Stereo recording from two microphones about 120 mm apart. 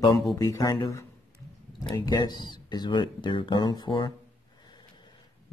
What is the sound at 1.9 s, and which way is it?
Speech, 35° left (ahead or behind).